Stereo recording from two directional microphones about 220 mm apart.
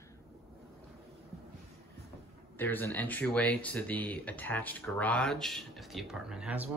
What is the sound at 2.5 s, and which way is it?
Speech, 10° left (ahead or behind).